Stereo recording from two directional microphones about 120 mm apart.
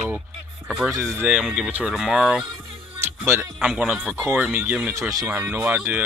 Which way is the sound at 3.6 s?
5° right (ahead or behind).